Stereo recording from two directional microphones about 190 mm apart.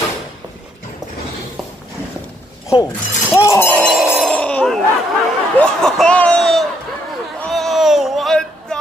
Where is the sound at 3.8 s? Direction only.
5° right (ahead or behind).